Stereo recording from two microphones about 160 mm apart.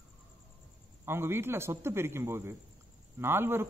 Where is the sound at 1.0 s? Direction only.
15° right (ahead or behind).